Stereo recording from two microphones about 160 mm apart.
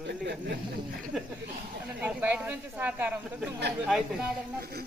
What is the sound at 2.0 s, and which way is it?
Speech, 10° right (ahead or behind).